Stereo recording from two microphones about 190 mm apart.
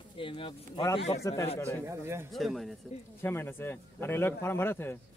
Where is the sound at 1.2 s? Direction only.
15° left (ahead or behind).